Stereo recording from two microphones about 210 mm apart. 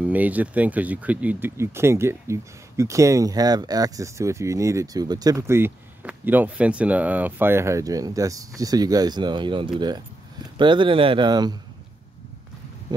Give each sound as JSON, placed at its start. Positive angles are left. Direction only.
{"t": 0.0, "sound": "speech", "side_deg": -5}